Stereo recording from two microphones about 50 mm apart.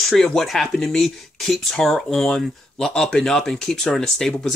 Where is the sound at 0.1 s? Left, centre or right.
Centre.